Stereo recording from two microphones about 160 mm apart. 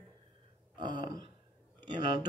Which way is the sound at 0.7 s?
30° right (ahead or behind).